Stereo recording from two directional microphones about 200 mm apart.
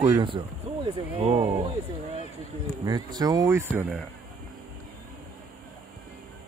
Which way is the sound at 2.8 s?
20° right (ahead or behind).